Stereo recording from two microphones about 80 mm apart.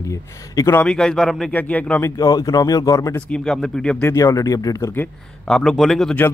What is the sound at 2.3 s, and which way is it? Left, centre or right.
Speech, left.